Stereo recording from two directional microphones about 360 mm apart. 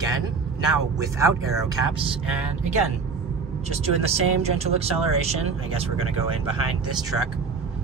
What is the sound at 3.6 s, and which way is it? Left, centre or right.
Speech, centre.